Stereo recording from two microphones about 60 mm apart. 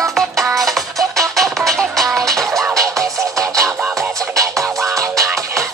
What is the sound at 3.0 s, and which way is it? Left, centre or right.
Music, right.